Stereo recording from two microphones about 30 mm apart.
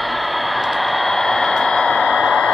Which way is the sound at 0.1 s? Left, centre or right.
Centre.